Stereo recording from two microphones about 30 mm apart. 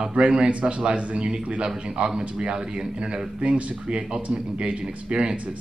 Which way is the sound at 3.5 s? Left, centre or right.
Right.